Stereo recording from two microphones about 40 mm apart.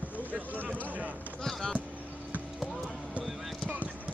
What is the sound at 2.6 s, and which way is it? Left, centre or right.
Music, centre.